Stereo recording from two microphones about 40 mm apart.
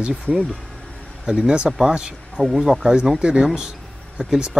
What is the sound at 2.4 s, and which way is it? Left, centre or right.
Speech, centre.